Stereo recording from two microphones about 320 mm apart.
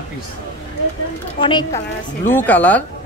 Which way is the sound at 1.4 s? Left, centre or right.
Centre.